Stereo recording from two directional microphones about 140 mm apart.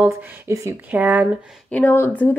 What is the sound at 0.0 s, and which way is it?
A woman's voice, 20° right (ahead or behind).